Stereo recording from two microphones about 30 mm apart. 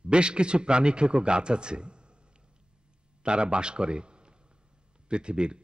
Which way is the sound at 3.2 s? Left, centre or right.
Right.